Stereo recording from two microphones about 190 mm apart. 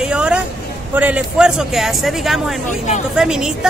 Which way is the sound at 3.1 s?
5° right (ahead or behind).